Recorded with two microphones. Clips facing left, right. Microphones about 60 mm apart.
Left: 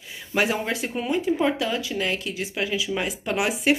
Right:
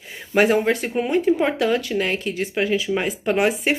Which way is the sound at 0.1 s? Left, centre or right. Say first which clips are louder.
Right 7 dB; right.